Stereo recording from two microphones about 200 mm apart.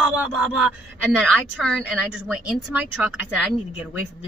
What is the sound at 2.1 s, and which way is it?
A man's voice, 5° right (ahead or behind).